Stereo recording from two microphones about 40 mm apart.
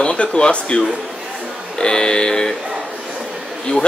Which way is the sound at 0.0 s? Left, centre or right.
Left.